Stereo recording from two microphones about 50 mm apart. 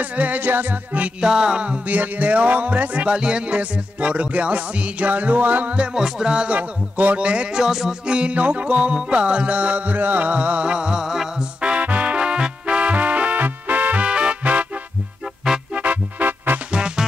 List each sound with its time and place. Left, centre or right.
0.0 s music: right
1.2 s speech: centre; by 5.8 s right
5.8 s music: centre
7.2 s speech: right
7.6 s music: centre
8.1 s speech: right
11.6 s music: right
14.0 s music: right
15.7 s music: right
16.7 s music: centre